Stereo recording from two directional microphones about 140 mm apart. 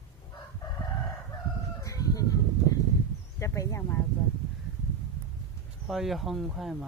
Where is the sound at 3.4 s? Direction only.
20° left (ahead or behind).